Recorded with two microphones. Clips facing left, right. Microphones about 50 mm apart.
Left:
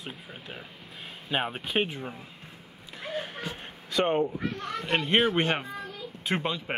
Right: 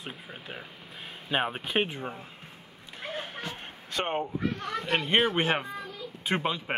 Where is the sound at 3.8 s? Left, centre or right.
Right.